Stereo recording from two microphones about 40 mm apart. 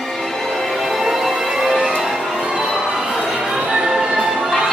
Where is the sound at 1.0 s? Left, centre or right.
Centre.